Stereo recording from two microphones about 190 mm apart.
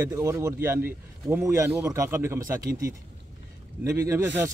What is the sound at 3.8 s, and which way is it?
Speech, 15° right (ahead or behind).